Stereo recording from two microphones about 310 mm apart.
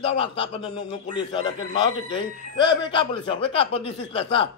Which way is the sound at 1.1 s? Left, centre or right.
Centre.